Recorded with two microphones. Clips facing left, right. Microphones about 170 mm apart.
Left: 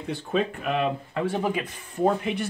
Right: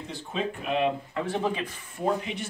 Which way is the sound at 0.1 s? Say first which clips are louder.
Left 6 dB; 60° left (ahead or behind).